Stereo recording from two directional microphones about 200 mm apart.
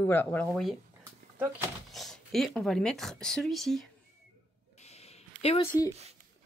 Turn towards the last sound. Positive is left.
turn(degrees=30)  # may be behind; listen again after turning